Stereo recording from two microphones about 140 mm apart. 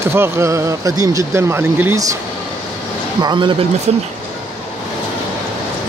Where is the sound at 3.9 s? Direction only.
55° right (ahead or behind).